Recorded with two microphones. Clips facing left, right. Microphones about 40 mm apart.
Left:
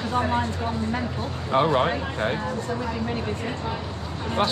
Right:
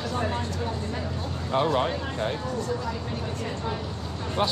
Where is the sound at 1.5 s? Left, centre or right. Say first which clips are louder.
Left 3 dB; centre.